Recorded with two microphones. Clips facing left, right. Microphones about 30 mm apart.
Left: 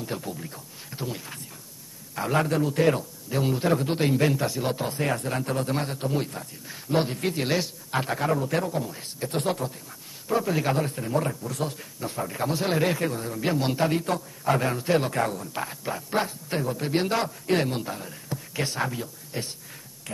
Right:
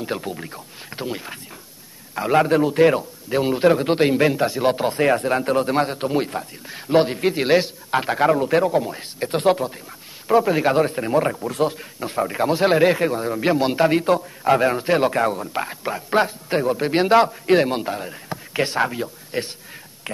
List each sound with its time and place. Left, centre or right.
0.0 s a man's voice: right